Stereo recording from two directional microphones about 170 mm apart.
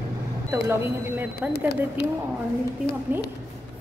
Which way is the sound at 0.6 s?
10° right (ahead or behind).